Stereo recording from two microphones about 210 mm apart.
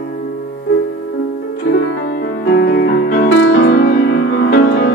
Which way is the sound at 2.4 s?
55° left (ahead or behind).